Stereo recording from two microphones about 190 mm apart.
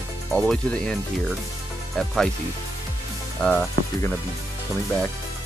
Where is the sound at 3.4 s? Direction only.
5° left (ahead or behind).